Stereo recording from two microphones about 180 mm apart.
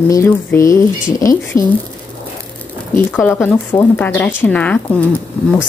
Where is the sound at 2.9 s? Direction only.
10° left (ahead or behind).